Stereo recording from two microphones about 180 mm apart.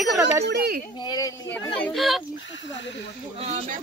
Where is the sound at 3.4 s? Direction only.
35° right (ahead or behind).